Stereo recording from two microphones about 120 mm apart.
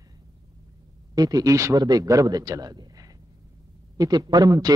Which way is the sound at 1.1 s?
30° right (ahead or behind).